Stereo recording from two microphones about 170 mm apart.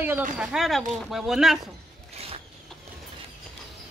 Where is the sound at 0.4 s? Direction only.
Centre (ahead or behind).